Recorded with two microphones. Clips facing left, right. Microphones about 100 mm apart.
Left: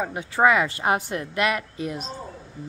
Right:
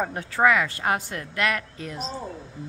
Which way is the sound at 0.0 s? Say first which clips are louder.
Even; 10° left (ahead or behind).